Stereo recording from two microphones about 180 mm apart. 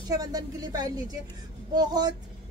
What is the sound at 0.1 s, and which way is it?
A woman's voice, 20° right (ahead or behind).